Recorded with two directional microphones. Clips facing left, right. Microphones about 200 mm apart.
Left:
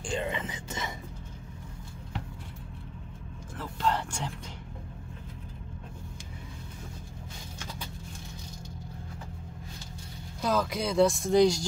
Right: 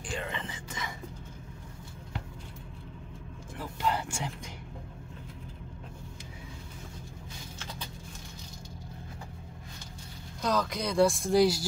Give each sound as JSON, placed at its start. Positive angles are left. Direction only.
{"t": 0.0, "sound": "whispering", "side_deg": 20}
{"t": 3.5, "sound": "vehicle", "side_deg": -10}
{"t": 10.4, "sound": "speech", "side_deg": 5}